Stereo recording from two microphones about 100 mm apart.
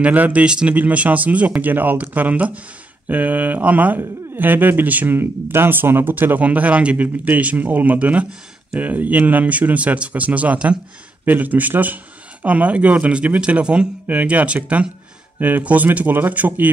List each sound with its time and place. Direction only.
0.0 s speech: 15° right (ahead or behind)